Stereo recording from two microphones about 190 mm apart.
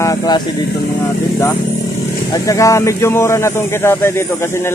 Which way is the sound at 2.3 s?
15° left (ahead or behind).